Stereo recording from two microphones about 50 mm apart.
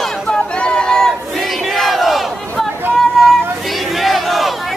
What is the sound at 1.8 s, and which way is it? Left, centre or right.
Battle cry, centre.